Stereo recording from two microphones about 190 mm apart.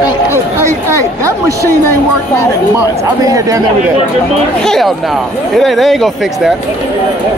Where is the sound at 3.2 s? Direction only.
15° right (ahead or behind).